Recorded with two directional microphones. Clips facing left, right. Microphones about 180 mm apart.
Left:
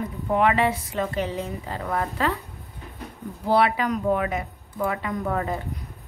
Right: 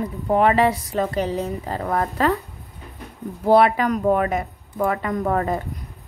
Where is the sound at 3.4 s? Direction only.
45° right (ahead or behind).